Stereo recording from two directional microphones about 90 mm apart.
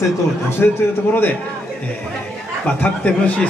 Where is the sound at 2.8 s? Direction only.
15° left (ahead or behind).